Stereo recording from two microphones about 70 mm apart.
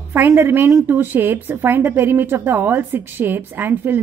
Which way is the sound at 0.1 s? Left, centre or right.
Right.